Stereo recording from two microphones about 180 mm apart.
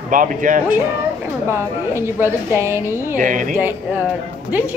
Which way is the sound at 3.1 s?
45° right (ahead or behind).